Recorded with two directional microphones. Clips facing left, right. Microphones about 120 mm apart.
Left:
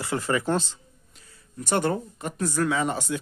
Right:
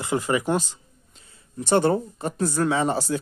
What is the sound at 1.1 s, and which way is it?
Speech, 25° right (ahead or behind).